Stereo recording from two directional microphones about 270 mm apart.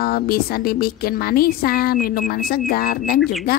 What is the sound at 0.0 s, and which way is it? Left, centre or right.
Speech, left.